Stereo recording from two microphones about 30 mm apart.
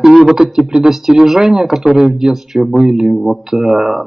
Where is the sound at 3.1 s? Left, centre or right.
Centre.